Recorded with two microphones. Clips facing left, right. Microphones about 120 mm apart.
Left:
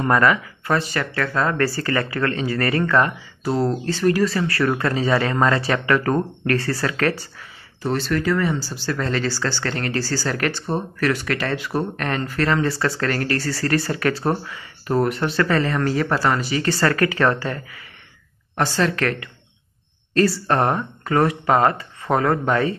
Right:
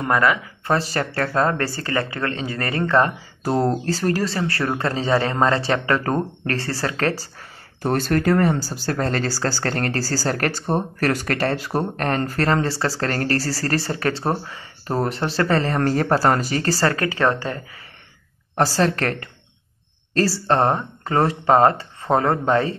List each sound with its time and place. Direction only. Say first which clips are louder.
0.0 s speech: left 2 dB; 10° right (ahead or behind)
0.7 s speech: right 1 dB; 35° right (ahead or behind)
3.4 s speech: right 1 dB; 45° right (ahead or behind)
7.8 s speech: right 2 dB; 50° right (ahead or behind); by 17.8 s 25° right (ahead or behind)
18.5 s speech: right 2 dB; 35° right (ahead or behind)